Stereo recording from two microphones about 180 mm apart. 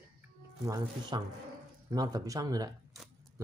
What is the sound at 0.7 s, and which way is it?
Speech, 25° right (ahead or behind).